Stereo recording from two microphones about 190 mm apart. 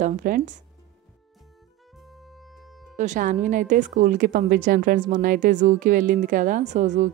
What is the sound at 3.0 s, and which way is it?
A woman's voice, 40° right (ahead or behind).